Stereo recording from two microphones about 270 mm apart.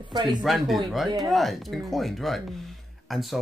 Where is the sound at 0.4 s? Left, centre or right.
Centre.